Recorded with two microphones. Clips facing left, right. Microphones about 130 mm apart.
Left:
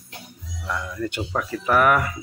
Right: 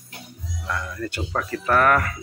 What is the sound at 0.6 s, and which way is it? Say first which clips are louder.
Speech: left 1 dB; 10° left (ahead or behind).